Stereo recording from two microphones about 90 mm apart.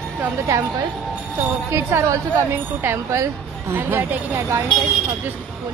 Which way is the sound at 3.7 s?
20° right (ahead or behind).